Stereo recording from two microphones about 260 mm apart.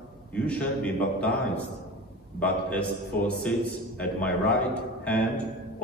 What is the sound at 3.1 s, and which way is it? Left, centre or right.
Speech, left.